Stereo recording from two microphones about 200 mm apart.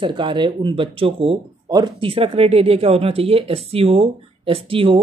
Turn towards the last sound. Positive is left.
turn(degrees=-30)  # may be behind; listen again after turning